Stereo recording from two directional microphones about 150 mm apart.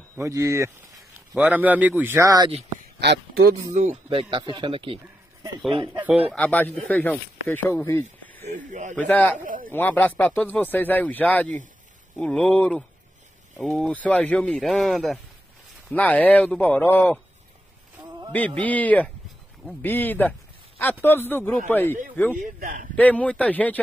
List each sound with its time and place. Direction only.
0.2 s speech: 20° right (ahead or behind)
3.0 s speech: 90° right
3.9 s speech: 35° right (ahead or behind)
5.9 s a man's voice: 10° right (ahead or behind)
6.3 s speech: 10° left (ahead or behind)
8.4 s speech: 60° right (ahead or behind)
8.9 s speech: 10° left (ahead or behind)
9.4 s a sound: 65° right (ahead or behind)
9.7 s speech: 10° left (ahead or behind)
18.6 s speech: 10° left (ahead or behind)
22.4 s a man's voice: 65° right (ahead or behind)
22.9 s speech: 10° left (ahead or behind)